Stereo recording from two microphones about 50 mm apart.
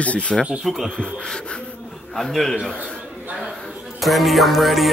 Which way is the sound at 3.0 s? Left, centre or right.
Right.